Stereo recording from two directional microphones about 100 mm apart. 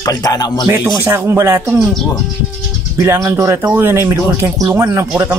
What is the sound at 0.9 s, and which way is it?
Speech, 30° right (ahead or behind).